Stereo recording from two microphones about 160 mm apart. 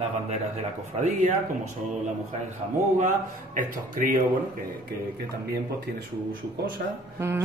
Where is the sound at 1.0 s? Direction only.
50° right (ahead or behind).